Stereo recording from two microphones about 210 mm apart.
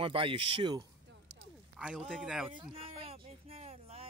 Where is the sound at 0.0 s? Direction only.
25° right (ahead or behind).